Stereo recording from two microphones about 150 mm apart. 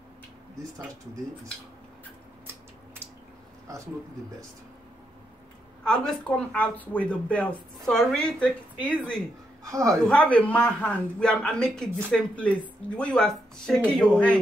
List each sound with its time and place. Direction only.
6.0 s a man's voice: 5° left (ahead or behind)
9.7 s a woman's voice: 20° right (ahead or behind)
10.0 s a man's voice: 5° left (ahead or behind)